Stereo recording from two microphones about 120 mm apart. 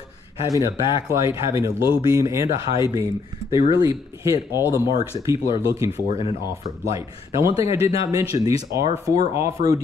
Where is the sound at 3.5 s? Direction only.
45° left (ahead or behind).